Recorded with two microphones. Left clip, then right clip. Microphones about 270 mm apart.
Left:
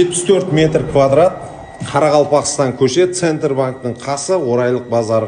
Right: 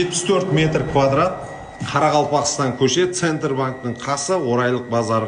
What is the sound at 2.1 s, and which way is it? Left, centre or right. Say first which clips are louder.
Speech: left 5 dB; centre.